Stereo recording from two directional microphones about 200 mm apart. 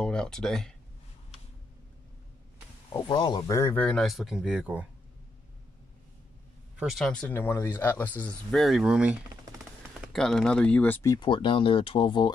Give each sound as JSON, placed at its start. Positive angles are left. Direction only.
{"t": 0.0, "sound": "speech", "side_deg": 5}
{"t": 2.9, "sound": "speech", "side_deg": 20}
{"t": 6.8, "sound": "speech", "side_deg": 0}